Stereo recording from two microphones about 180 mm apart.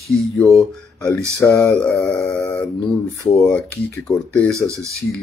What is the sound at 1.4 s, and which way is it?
Speech, 15° left (ahead or behind).